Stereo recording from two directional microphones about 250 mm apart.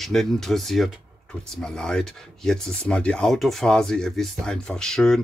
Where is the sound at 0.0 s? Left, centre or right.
Centre.